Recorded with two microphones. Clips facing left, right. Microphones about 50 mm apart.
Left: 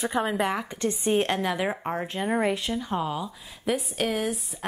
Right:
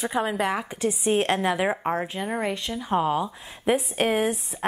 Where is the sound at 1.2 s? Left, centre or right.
Centre.